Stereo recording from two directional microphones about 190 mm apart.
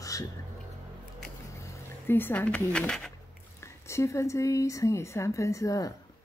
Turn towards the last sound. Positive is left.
turn(degrees=15)  # may be behind; listen again after turning